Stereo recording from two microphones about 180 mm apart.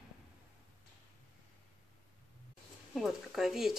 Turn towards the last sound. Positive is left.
turn(degrees=0)  # may be behind; listen again after turning